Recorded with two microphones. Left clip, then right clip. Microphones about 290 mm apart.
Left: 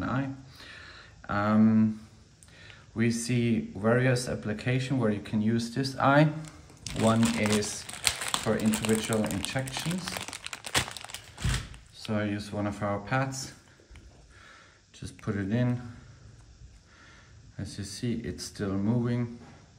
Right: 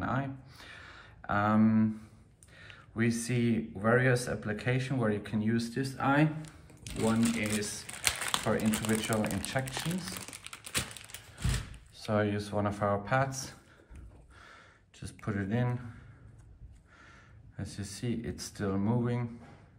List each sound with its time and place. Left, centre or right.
0.0 s a sound: centre
2.5 s speech: centre; by 7.5 s left
7.6 s speech: centre
10.4 s crumpling: left
12.1 s speech: centre
14.4 s a sound: centre
17.6 s speech: centre